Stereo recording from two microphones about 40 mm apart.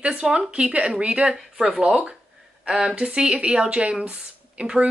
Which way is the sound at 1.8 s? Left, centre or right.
Right.